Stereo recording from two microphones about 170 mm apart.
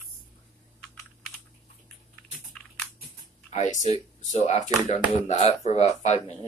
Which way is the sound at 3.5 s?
45° left (ahead or behind).